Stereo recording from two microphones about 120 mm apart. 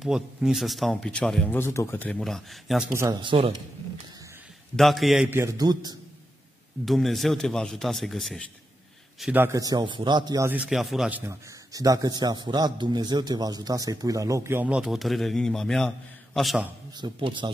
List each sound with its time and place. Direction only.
0.0 s speech: 5° right (ahead or behind)
1.6 s speech: 20° left (ahead or behind)
2.1 s speech: centre (ahead or behind)
2.9 s a man's voice: 25° right (ahead or behind)
4.7 s speech: centre (ahead or behind)
5.3 s a man's voice: 25° right (ahead or behind)
6.9 s speech: centre (ahead or behind)
9.3 s a man's voice: 20° right (ahead or behind)
9.6 s a man's voice: 35° right (ahead or behind)
10.4 s a man's voice: 15° right (ahead or behind)
10.7 s speech: centre (ahead or behind)
11.1 s a man's voice: 15° right (ahead or behind)
11.7 s a man's voice: 30° right (ahead or behind); by 16.6 s centre (ahead or behind)
16.9 s speech: 40° right (ahead or behind)